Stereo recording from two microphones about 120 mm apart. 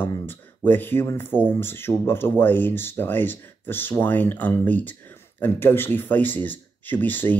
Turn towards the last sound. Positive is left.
turn(degrees=15)  # may be behind; listen again after turning